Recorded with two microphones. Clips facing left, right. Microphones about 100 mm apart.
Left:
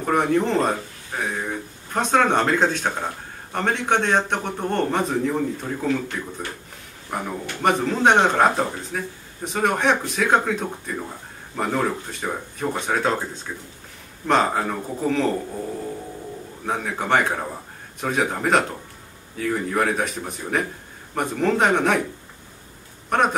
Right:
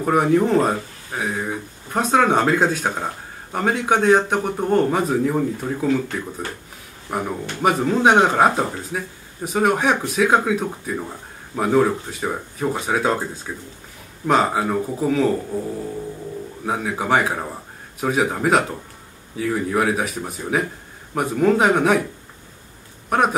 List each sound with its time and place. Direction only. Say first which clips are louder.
0.0 s speech: right 3 dB; 5° right (ahead or behind)
7.1 s speech: right 3 dB; 5° right (ahead or behind)
16.6 s speech: right 2 dB; 5° right (ahead or behind)
23.0 s speech: right 1 dB; 5° right (ahead or behind)